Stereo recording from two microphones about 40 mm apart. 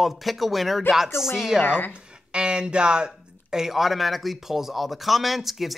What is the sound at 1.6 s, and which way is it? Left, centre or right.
Speech, left.